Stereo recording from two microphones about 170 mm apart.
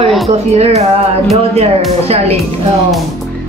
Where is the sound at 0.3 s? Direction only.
40° right (ahead or behind).